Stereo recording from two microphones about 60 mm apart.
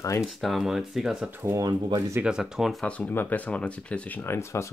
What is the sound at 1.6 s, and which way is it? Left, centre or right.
Speech, right.